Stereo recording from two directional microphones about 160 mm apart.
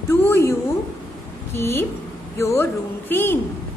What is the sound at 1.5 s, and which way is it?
A woman's voice, 15° left (ahead or behind).